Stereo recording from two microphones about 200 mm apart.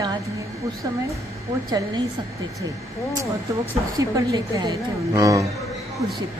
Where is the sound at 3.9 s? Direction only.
15° right (ahead or behind).